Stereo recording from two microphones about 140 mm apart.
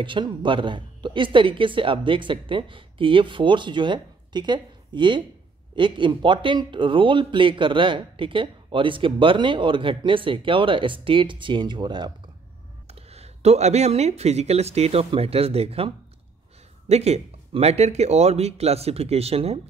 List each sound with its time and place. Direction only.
0.0 s speech: 35° right (ahead or behind)
12.8 s speech: 50° right (ahead or behind)
16.9 s speech: 50° right (ahead or behind)